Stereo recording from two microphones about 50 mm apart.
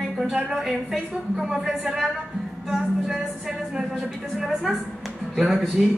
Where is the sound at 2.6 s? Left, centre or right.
Centre.